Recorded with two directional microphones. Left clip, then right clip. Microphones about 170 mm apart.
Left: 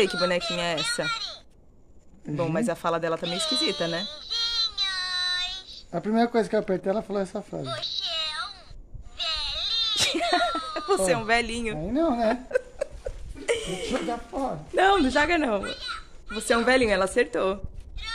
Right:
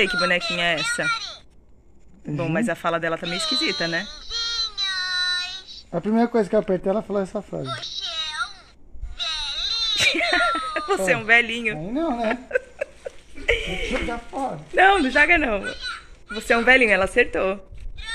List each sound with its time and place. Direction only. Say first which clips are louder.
0.0 s a child's voice: right 4 dB; 10° left (ahead or behind)
2.3 s bleat: right 2 dB; 5° left (ahead or behind)
5.9 s speech: right 2 dB; 35° right (ahead or behind)
8.0 s a sound: right 4 dB; 15° left (ahead or behind)
9.1 s sheep: right 2 dB; 15° left (ahead or behind)
9.9 s speech: right 6 dB; 5° left (ahead or behind)
15.6 s a sound: right 3 dB; 20° left (ahead or behind)
16.3 s a child's voice: right 5 dB; centre (ahead or behind)